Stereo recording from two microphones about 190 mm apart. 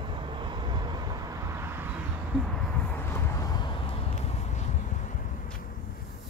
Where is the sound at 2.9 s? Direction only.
15° left (ahead or behind); by 4.6 s 30° left (ahead or behind).